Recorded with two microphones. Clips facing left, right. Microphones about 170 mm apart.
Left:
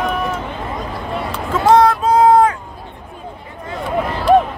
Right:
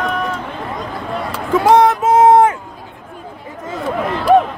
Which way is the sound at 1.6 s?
20° right (ahead or behind).